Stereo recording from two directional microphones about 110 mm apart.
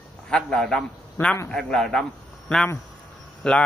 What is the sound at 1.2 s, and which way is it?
Speech, 25° left (ahead or behind).